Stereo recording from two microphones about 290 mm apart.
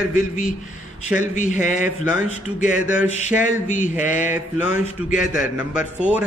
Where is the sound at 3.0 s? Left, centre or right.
Left.